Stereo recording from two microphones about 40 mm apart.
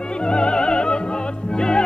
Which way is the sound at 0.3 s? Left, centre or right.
Left.